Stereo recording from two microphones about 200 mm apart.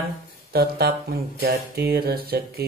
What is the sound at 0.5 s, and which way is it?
Speech, 50° right (ahead or behind).